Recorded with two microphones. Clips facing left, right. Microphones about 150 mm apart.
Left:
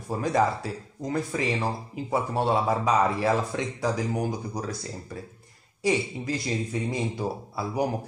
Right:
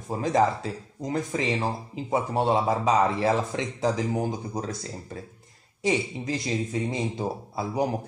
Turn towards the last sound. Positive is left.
turn(degrees=-25)  # may be behind; listen again after turning